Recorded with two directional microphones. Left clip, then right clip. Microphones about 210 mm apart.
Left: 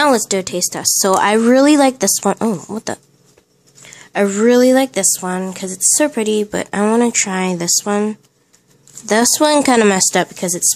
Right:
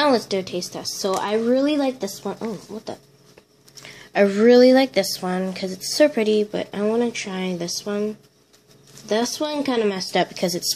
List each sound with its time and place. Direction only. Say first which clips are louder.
0.0 s speech: left 5 dB; 25° left (ahead or behind); by 3.0 s 50° left (ahead or behind)
3.8 s a woman's voice: left 1 dB; 15° left (ahead or behind)
6.5 s speech: left 7 dB; 30° left (ahead or behind)
9.1 s speech: left 10 dB; 45° left (ahead or behind)
10.1 s a woman's voice: left 4 dB; 20° left (ahead or behind)